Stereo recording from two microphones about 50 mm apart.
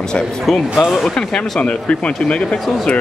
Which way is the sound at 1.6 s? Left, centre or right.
Left.